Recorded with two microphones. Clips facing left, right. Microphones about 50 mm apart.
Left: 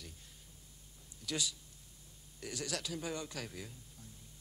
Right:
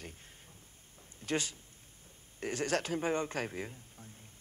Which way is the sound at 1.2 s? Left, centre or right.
Right.